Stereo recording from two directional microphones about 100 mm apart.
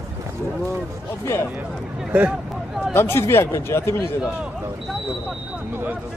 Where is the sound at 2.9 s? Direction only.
25° left (ahead or behind).